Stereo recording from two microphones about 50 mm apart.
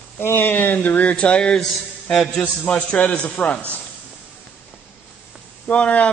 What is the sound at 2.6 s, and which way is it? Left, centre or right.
Speech, centre.